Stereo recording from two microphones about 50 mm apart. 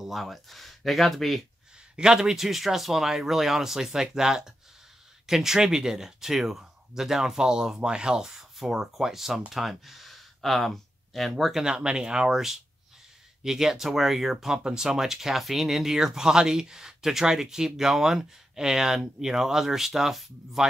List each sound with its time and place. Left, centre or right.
0.0 s speech: centre
2.0 s speech: centre
11.6 s speech: centre